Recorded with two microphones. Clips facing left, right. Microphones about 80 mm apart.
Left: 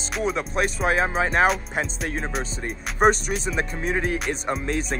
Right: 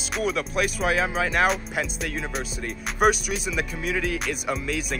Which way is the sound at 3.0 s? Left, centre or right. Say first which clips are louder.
Left 2 dB; left.